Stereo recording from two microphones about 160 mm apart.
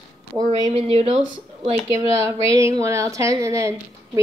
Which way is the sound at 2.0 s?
20° right (ahead or behind).